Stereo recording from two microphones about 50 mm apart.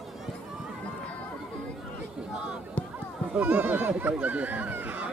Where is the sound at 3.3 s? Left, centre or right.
Right.